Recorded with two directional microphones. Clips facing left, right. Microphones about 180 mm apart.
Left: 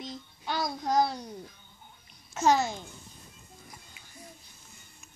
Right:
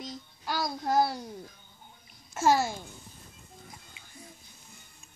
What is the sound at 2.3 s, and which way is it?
Speech, 10° right (ahead or behind).